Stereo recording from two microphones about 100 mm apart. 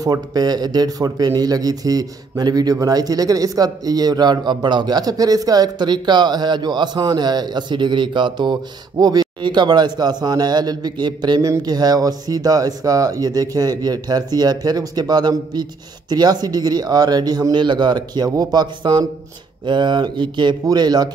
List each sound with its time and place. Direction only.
0.0 s speech: 40° right (ahead or behind)